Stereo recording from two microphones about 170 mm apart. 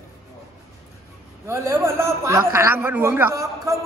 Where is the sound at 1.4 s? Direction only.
15° right (ahead or behind).